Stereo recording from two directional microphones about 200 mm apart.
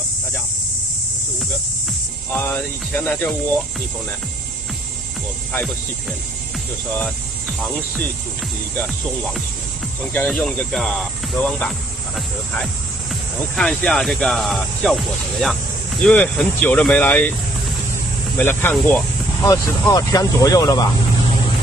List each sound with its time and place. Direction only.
2.3 s speech: 10° left (ahead or behind)
10.1 s speech: 5° left (ahead or behind)
13.6 s speech: 5° left (ahead or behind)
18.4 s speech: 10° left (ahead or behind)